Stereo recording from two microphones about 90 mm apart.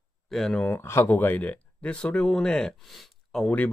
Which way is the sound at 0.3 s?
5° left (ahead or behind).